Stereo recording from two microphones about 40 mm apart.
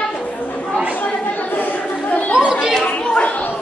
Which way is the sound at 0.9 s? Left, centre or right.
Left.